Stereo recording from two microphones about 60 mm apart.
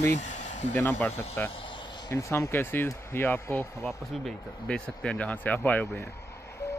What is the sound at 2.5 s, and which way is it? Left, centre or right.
Speech, left.